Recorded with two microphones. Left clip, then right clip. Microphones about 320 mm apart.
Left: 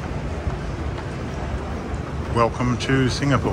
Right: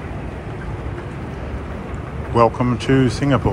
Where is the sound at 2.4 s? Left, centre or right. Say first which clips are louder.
Right 5 dB; centre.